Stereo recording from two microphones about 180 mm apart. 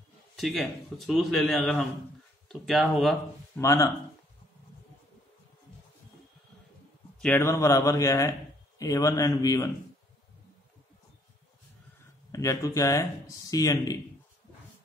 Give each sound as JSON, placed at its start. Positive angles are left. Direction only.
{"t": 0.4, "sound": "speech", "side_deg": 0}
{"t": 3.5, "sound": "a man's voice", "side_deg": 15}
{"t": 7.2, "sound": "a man's voice", "side_deg": 10}
{"t": 12.3, "sound": "a man's voice", "side_deg": 15}